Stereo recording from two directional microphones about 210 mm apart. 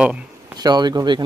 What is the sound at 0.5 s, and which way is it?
Speech, 20° right (ahead or behind).